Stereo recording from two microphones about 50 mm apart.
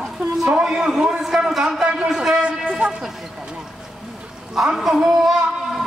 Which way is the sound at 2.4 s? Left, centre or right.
Right.